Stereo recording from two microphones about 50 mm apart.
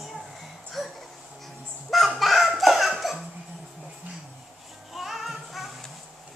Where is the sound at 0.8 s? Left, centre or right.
Centre.